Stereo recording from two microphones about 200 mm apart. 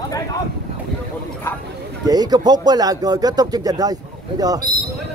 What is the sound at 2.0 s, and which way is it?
Speech, 20° right (ahead or behind).